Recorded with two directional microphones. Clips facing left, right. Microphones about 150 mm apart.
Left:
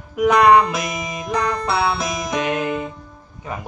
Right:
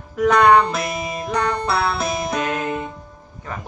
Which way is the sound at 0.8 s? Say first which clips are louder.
Right 2 dB; 30° right (ahead or behind).